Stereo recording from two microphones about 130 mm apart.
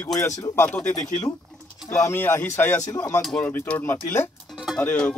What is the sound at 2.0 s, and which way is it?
Speech, 20° left (ahead or behind).